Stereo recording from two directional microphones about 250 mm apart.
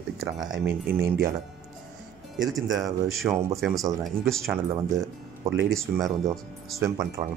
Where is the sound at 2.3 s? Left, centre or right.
Centre.